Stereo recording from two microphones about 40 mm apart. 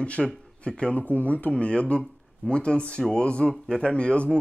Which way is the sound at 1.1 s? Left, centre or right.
Left.